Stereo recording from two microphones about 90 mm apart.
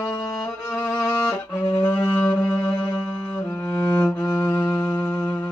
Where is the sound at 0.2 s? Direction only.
40° left (ahead or behind).